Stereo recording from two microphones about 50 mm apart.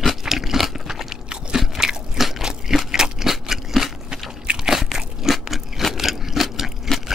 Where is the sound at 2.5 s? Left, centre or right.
Centre.